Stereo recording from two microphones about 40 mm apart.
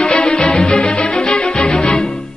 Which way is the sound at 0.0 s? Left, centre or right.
Left.